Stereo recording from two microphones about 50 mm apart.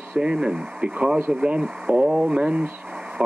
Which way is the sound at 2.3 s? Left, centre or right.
Right.